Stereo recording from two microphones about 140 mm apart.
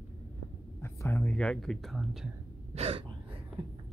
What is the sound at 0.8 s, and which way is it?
Speech, 15° left (ahead or behind).